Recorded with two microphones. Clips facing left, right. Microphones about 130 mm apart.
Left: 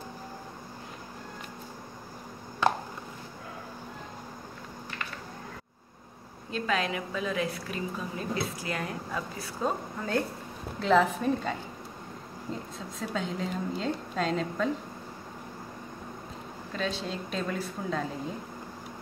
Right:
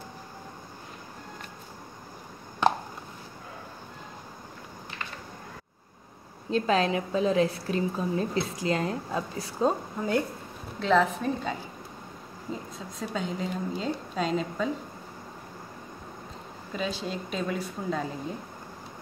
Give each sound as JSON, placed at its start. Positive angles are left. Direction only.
{"t": 6.5, "sound": "a woman's voice", "side_deg": -30}
{"t": 10.8, "sound": "a woman's voice", "side_deg": 0}
{"t": 16.7, "sound": "a woman's voice", "side_deg": -5}